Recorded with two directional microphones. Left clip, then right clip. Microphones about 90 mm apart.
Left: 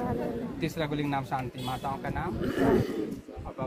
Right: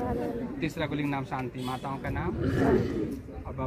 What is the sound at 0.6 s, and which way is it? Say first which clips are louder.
Speech: even; 60° left (ahead or behind).